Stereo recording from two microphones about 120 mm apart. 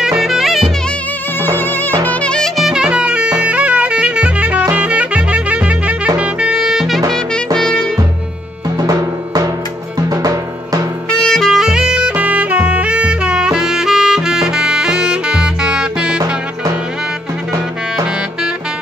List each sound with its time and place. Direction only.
0.0 s music: 5° right (ahead or behind)
1.4 s music: 15° left (ahead or behind); by 7.0 s 5° right (ahead or behind)
7.5 s music: 5° left (ahead or behind)
8.7 s music: 30° right (ahead or behind)
11.1 s saxophone: 5° left (ahead or behind)